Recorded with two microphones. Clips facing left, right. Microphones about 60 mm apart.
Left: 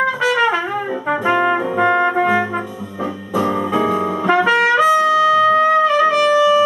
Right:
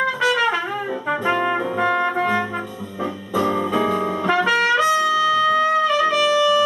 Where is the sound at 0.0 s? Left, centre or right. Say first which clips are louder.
Left 3 dB; centre.